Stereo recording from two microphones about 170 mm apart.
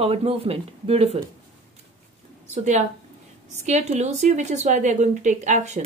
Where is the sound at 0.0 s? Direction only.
35° right (ahead or behind).